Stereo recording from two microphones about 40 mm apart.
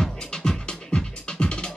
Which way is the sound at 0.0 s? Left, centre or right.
Centre.